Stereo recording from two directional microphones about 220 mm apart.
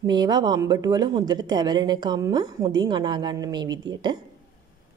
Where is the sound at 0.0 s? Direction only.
20° right (ahead or behind).